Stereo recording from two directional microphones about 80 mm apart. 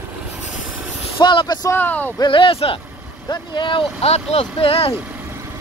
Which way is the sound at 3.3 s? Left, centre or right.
Left.